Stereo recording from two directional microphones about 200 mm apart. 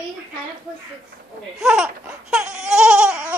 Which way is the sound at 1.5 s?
5° right (ahead or behind).